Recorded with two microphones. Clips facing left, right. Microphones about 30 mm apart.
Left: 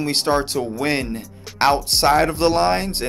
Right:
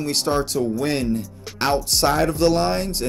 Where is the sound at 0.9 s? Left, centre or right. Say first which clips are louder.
Right 2 dB; left.